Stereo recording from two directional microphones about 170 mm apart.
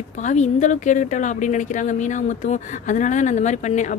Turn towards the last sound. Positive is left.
turn(degrees=45)  # may be behind; listen again after turning